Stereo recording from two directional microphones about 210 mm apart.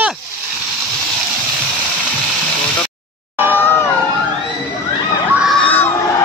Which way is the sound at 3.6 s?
10° left (ahead or behind).